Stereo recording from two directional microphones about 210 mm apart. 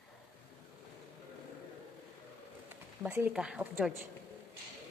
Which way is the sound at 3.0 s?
10° right (ahead or behind).